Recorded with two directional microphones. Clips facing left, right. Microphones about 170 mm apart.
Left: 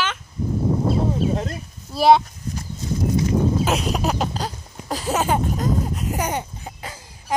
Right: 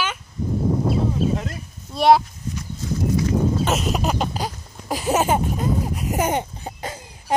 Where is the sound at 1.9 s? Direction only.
Centre (ahead or behind).